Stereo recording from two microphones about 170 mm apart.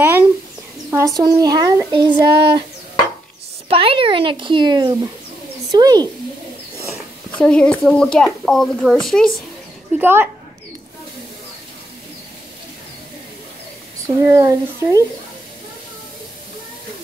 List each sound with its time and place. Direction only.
0.8 s speech: 15° right (ahead or behind)
3.6 s speech: 30° right (ahead or behind)
6.9 s speech: 5° left (ahead or behind)
9.9 s speech: 10° right (ahead or behind)
14.0 s speech: 20° right (ahead or behind)